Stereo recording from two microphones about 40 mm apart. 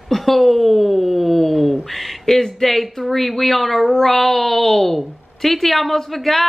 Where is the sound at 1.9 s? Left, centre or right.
Centre.